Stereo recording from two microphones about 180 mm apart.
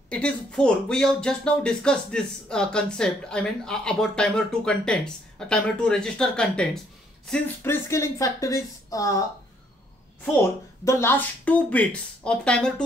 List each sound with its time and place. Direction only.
0.1 s speech: 5° left (ahead or behind)
10.9 s speech: 15° left (ahead or behind)